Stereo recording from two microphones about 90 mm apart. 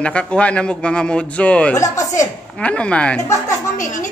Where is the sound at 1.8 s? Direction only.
35° left (ahead or behind).